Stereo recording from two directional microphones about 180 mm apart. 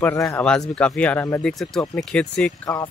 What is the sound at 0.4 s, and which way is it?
Speech, 5° left (ahead or behind).